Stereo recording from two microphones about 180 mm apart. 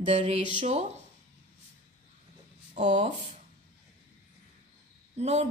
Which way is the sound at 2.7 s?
40° right (ahead or behind).